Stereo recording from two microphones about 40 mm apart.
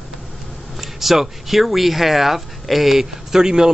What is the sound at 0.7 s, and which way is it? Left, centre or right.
Speech, centre.